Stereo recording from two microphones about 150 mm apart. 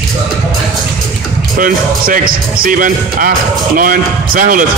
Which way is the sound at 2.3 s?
70° right (ahead or behind).